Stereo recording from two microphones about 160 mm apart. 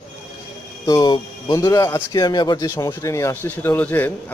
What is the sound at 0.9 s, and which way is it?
Speech, 25° left (ahead or behind).